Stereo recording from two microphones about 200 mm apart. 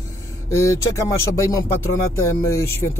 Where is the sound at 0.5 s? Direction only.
15° left (ahead or behind).